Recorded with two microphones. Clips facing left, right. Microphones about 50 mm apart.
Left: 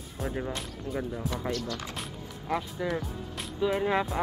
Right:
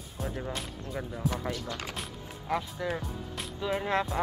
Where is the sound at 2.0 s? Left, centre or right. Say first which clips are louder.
Left 1 dB; centre.